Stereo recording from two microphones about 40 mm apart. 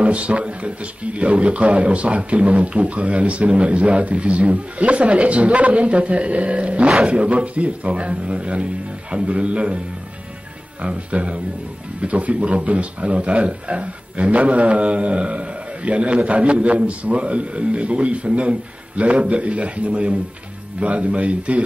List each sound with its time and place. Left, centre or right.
0.0 s speech: right
10.8 s speech: right